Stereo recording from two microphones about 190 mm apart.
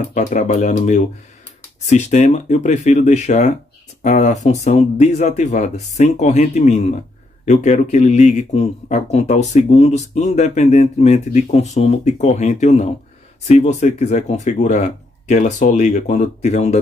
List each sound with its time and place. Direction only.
0.1 s speech: 40° left (ahead or behind)